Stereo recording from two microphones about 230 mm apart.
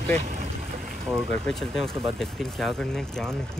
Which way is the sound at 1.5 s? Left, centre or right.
Centre.